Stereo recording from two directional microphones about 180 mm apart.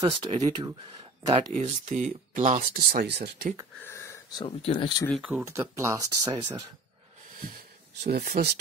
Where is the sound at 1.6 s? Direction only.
45° right (ahead or behind); by 3.5 s 65° right (ahead or behind).